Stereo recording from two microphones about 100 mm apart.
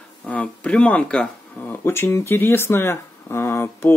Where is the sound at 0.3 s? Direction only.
10° left (ahead or behind).